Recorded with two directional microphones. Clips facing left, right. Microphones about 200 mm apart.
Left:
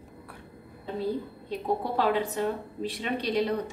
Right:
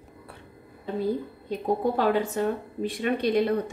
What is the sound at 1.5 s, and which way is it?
A woman's voice, 45° right (ahead or behind).